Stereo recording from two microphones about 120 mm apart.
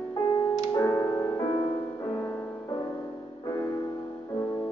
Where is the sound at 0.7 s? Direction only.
25° left (ahead or behind).